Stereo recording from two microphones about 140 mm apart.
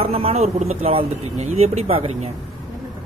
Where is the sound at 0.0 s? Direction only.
45° right (ahead or behind).